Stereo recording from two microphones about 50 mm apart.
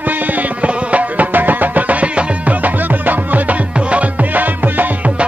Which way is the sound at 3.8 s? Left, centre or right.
Right.